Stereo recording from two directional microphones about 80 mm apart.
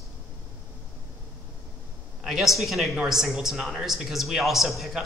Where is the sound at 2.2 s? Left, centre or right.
Centre.